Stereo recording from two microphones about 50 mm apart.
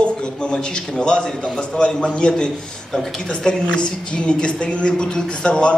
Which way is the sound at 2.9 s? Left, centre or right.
Centre.